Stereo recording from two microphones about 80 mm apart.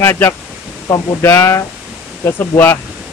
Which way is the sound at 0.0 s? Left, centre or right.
Left.